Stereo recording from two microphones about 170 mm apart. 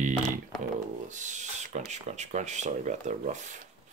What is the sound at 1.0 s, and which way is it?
Speech, 45° right (ahead or behind).